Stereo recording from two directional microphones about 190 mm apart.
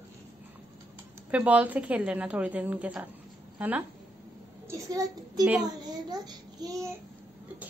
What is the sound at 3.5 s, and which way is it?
Speech, 10° right (ahead or behind).